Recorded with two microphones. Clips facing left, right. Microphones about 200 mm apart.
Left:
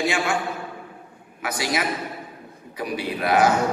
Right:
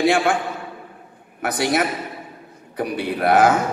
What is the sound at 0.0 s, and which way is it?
Speech, 55° right (ahead or behind).